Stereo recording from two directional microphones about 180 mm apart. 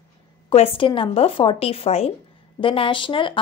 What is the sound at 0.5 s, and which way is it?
A woman's voice, 30° left (ahead or behind).